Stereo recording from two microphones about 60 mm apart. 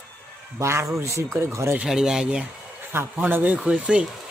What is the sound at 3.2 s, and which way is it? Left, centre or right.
Speech, right.